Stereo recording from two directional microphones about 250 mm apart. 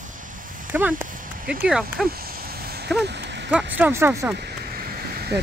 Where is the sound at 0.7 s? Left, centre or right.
Centre.